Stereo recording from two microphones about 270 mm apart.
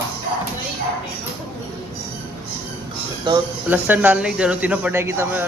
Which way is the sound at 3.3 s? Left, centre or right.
Centre.